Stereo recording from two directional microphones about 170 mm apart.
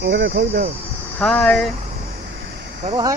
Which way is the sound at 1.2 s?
5° left (ahead or behind).